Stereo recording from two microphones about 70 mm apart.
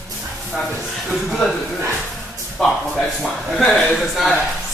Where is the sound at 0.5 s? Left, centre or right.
Centre.